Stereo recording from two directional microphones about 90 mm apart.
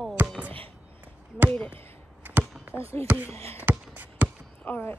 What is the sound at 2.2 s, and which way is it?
Chop, 20° right (ahead or behind).